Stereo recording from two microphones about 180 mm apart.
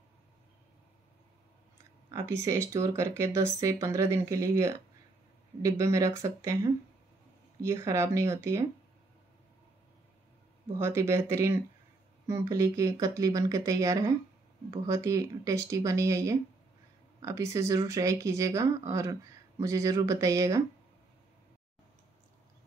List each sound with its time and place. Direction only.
2.0 s speech: 15° right (ahead or behind)
10.8 s speech: 15° right (ahead or behind)